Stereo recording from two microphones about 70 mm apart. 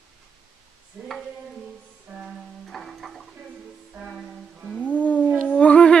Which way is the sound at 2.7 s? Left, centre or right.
Centre.